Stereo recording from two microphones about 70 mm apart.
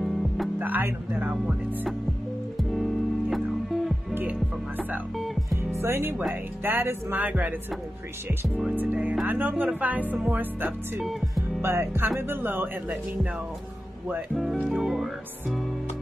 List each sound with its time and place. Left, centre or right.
0.0 s music: centre
0.6 s music: right
2.5 s music: centre
4.3 s music: right
5.1 s music: centre
5.8 s speech: right
8.7 s speech: right
11.1 s music: centre
11.6 s speech: right
14.3 s speech: centre